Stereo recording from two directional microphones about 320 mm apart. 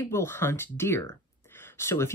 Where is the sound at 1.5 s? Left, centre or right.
Centre.